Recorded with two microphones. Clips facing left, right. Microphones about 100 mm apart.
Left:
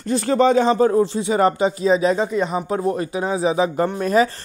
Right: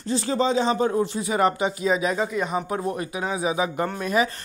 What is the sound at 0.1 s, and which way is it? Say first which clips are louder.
Speech: left 6 dB; 60° left (ahead or behind).